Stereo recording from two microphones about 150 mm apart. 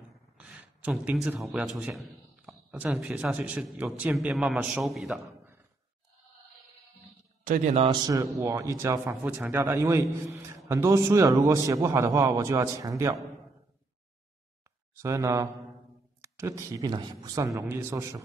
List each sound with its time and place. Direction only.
0.4 s a sound: 10° right (ahead or behind)
1.5 s a man's voice: 5° right (ahead or behind)
7.4 s a man's voice: 55° right (ahead or behind)
8.4 s a man's voice: 20° right (ahead or behind)
15.0 s a man's voice: 20° right (ahead or behind)